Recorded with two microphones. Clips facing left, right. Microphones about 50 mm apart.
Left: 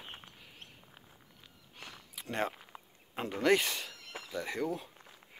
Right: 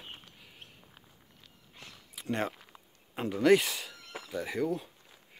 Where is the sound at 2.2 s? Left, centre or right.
Centre.